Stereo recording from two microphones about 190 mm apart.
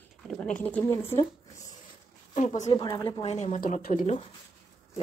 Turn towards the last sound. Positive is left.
turn(degrees=40)  # may be behind; listen again after turning